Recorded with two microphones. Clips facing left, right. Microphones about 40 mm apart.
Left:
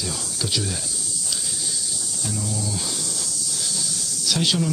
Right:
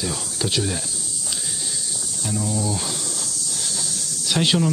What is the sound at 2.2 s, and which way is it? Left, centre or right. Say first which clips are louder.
Speech: right 5 dB; centre.